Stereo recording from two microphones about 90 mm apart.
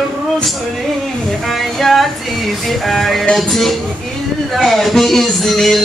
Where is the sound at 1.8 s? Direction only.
Centre (ahead or behind).